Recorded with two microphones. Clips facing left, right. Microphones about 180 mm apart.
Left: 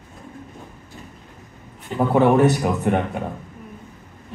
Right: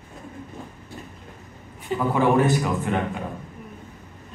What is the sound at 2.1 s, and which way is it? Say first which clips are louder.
Speech: left 4 dB; 70° left (ahead or behind).